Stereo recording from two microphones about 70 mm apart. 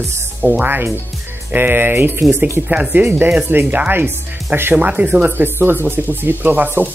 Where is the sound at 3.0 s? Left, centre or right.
Right.